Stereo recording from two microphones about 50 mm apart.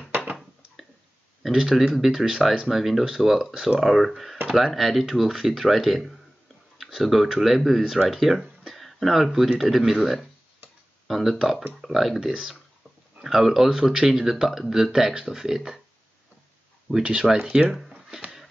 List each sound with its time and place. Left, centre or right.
1.4 s speech: centre
12.3 s speech: centre
17.0 s speech: centre
17.8 s a sound: centre